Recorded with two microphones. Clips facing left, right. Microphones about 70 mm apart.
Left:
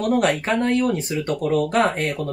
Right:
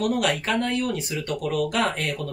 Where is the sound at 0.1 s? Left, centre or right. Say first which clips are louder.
Left 4 dB; left.